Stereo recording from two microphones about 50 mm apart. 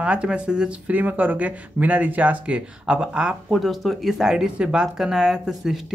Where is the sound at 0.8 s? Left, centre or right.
Right.